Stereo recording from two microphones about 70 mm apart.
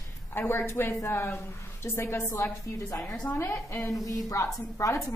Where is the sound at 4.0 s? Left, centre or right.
Left.